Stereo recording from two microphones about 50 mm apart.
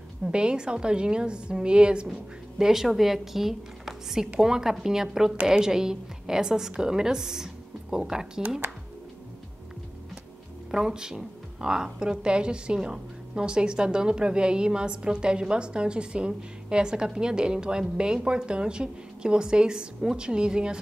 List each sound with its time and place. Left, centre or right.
0.3 s a woman's voice: centre
2.6 s speech: centre
10.7 s speech: centre